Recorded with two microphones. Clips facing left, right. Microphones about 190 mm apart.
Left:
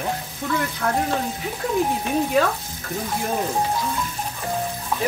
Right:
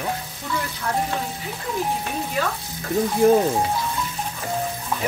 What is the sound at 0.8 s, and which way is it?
Frying, 60° left (ahead or behind).